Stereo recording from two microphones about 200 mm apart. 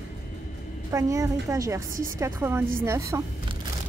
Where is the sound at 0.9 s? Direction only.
15° right (ahead or behind).